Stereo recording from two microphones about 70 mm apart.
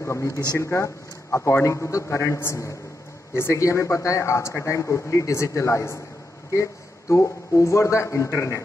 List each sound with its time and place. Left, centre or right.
0.0 s a man's voice: left